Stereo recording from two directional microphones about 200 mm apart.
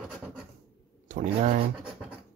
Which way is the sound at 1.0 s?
40° right (ahead or behind).